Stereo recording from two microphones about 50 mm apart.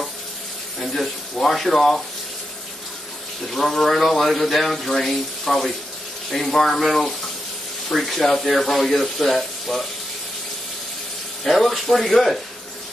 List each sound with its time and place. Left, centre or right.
0.7 s speech: centre
3.4 s speech: centre
11.4 s speech: centre